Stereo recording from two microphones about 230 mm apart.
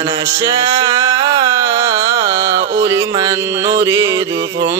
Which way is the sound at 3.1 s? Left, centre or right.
Centre.